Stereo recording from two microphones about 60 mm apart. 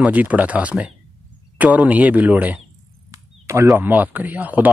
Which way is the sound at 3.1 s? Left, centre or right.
Right.